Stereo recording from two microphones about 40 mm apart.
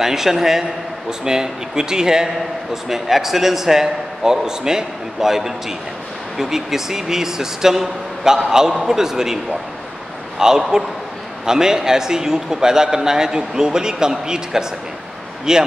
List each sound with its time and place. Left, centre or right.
0.0 s a man's voice: centre
10.4 s a man's voice: centre